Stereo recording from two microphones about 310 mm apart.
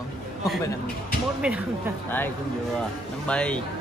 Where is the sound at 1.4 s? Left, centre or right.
Centre.